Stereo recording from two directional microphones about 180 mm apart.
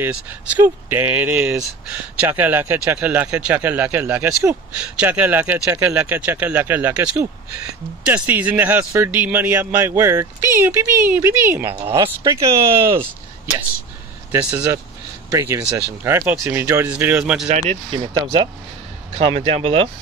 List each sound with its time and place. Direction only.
0.0 s speech: 10° right (ahead or behind)
14.3 s speech: 10° right (ahead or behind)
17.5 s speech: 40° right (ahead or behind)
18.2 s speech: 25° right (ahead or behind)